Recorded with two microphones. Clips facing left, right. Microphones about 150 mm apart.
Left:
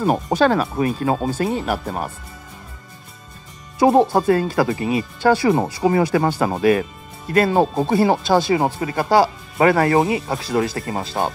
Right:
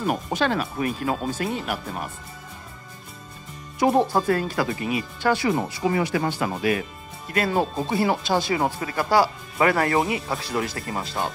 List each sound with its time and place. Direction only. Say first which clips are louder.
0.0 s speech: left 7 dB; 35° left (ahead or behind)
3.8 s speech: left 5 dB; 30° left (ahead or behind)